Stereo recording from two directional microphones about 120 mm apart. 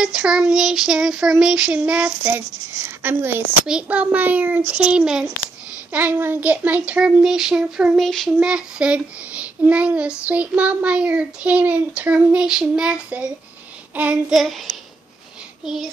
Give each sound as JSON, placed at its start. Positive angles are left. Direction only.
{"t": 0.0, "sound": "a child's voice", "side_deg": -5}